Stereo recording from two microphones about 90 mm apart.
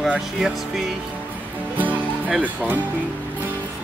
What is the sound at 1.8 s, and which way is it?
Music, 15° right (ahead or behind).